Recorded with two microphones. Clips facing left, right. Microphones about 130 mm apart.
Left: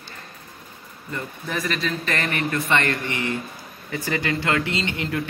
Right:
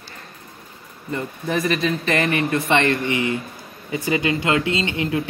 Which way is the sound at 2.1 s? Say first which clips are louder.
Right 6 dB; 20° right (ahead or behind).